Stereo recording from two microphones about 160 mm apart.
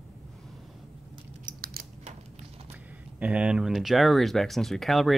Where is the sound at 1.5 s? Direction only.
65° right (ahead or behind).